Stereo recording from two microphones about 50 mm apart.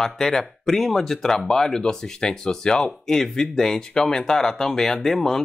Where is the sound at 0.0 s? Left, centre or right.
Centre.